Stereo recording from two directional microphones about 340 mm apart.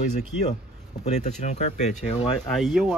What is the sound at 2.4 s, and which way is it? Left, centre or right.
Speech, centre.